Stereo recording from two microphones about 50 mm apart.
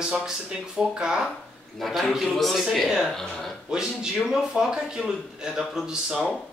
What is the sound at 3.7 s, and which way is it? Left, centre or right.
A man's voice, centre.